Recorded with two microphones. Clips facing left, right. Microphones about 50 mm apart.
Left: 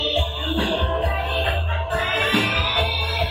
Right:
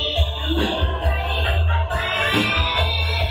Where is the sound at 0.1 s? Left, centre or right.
Left.